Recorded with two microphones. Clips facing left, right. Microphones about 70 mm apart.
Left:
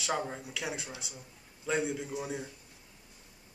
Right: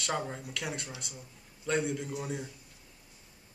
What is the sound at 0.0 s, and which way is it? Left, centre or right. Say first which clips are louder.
Speech: even; centre.